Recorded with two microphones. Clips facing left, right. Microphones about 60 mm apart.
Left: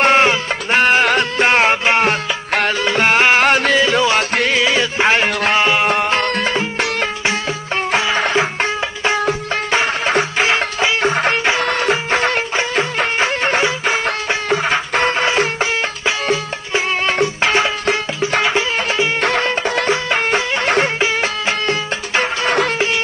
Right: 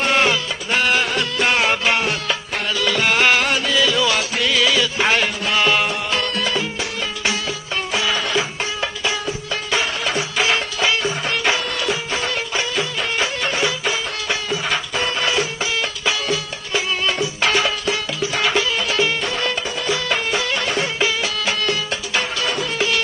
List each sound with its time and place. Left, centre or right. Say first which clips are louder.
0.0 s music: left 5 dB; left
3.4 s music: left 6 dB; left
3.8 s music: left 4 dB; left
4.6 s music: left 2 dB; left
5.9 s music: left 6 dB; left
11.0 s music: left 6 dB; left
14.0 s music: left 5 dB; left
15.0 s music: left 5 dB; left
17.8 s music: left 4 dB; left
18.4 s music: left 2 dB; left
19.6 s music: left 7 dB; left
19.9 s music: left 1 dB; left
20.6 s music: left 6 dB; left
21.2 s music: left 3 dB; left